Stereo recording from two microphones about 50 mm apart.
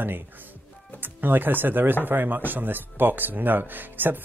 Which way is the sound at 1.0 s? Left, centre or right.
Right.